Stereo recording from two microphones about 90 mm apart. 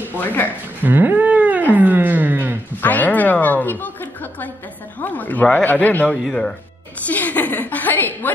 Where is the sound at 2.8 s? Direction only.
20° left (ahead or behind).